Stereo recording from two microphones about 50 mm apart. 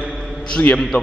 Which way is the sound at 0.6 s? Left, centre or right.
Left.